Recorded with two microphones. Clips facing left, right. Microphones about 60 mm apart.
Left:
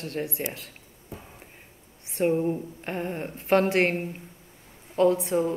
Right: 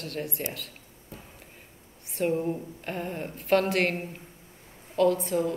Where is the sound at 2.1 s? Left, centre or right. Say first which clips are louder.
Left 3 dB; left.